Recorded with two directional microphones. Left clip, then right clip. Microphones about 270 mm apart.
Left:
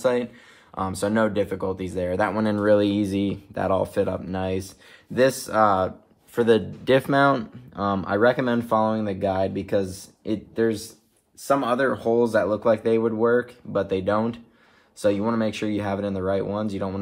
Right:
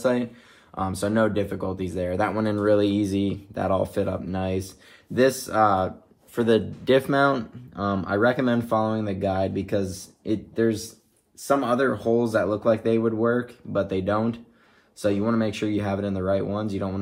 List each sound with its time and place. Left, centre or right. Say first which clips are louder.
0.0 s speech: left 1 dB; left